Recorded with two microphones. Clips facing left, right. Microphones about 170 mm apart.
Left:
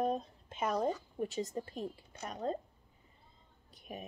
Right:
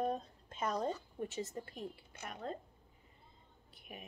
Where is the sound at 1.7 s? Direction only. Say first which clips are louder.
Left 5 dB; 35° left (ahead or behind).